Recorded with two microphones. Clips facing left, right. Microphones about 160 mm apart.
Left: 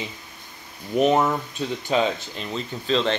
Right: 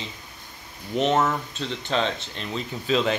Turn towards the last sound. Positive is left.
turn(degrees=-5)  # may be behind; listen again after turning